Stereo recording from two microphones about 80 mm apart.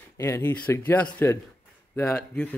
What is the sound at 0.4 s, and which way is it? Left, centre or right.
Speech, left.